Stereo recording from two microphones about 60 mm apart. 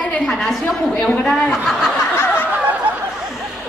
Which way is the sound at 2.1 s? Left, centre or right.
Left.